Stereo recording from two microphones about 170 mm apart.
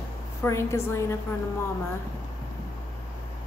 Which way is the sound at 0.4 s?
15° left (ahead or behind).